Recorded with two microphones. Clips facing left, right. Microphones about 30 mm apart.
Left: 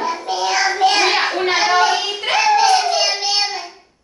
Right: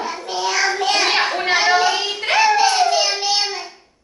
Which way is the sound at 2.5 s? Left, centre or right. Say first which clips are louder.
Left 4 dB; centre.